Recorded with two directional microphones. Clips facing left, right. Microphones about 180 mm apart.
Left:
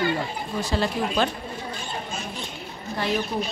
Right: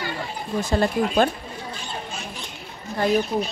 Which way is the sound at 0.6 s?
50° right (ahead or behind).